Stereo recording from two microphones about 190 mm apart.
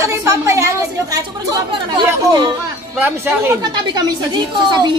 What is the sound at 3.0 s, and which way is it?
Speech, 10° right (ahead or behind).